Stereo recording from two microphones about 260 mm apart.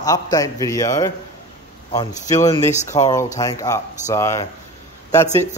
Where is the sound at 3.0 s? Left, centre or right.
Centre.